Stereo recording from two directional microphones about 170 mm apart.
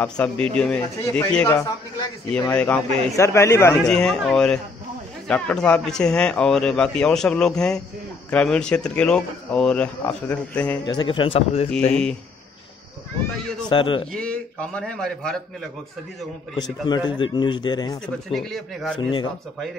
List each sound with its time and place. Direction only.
0.0 s a man's voice: 10° left (ahead or behind)
3.7 s a man's voice: 5° left (ahead or behind)
10.9 s speech: 30° left (ahead or behind)
11.9 s a man's voice: 5° left (ahead or behind)
13.7 s speech: 30° left (ahead or behind)
14.1 s a man's voice: 5° left (ahead or behind)
16.5 s speech: 25° left (ahead or behind)
18.0 s a man's voice: centre (ahead or behind)
18.9 s speech: 30° left (ahead or behind)